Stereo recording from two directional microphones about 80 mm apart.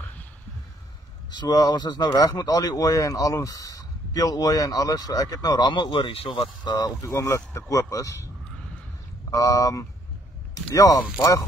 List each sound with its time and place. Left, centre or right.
1.3 s a man's voice: left
2.1 s speech: left
7.0 s speech: left
9.3 s speech: left